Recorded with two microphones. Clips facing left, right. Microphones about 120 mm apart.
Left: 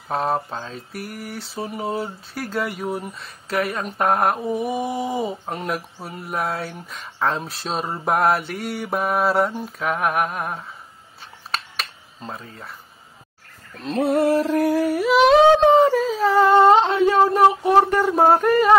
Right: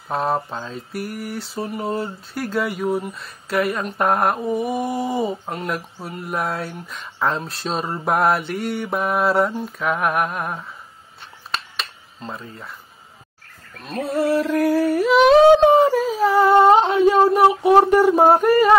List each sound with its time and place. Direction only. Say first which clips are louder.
0.1 s a sound: right 1 dB; centre (ahead or behind)
12.2 s speech: right 1 dB; centre (ahead or behind)
14.0 s music: left 1 dB; 55° left (ahead or behind)
14.6 s humming: right 1 dB; 15° left (ahead or behind)
15.0 s humming: right 2 dB; centre (ahead or behind)